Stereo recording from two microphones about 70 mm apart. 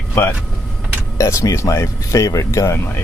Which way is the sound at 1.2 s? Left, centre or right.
Left.